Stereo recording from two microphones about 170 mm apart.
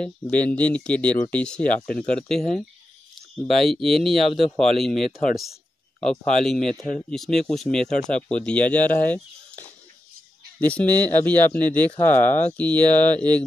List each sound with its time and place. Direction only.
0.0 s speech: 10° left (ahead or behind)
12.1 s speech: 50° left (ahead or behind)
12.5 s speech: 10° left (ahead or behind)